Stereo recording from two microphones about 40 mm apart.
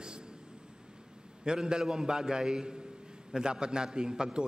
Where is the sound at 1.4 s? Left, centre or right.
Centre.